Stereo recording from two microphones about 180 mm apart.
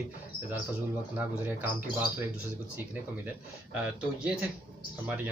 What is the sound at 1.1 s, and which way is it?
Speech, 10° right (ahead or behind).